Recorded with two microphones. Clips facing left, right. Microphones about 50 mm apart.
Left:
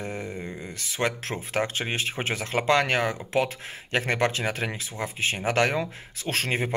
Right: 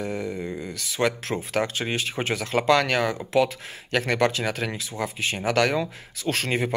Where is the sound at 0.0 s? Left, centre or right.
Left.